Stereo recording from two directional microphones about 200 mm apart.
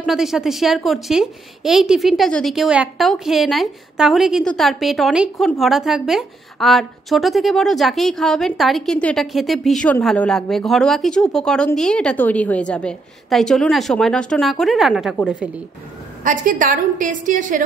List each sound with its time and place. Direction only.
0.0 s a woman's voice: centre (ahead or behind)
16.3 s a woman's voice: 40° right (ahead or behind)